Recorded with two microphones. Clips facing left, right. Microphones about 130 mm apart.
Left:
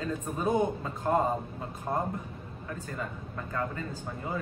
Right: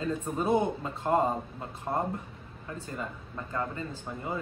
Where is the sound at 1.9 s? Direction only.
5° right (ahead or behind).